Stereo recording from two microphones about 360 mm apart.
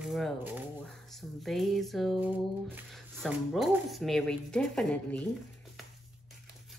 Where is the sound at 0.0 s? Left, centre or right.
Centre.